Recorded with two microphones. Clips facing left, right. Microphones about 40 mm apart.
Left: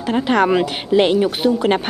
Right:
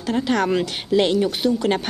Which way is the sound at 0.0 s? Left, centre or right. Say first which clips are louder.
Left 4 dB; left.